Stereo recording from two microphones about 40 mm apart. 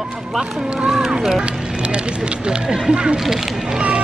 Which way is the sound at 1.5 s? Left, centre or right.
Centre.